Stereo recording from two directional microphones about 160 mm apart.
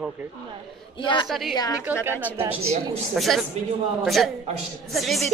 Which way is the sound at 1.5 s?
25° left (ahead or behind).